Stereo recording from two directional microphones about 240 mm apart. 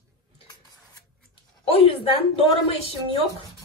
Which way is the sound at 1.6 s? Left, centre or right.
Left.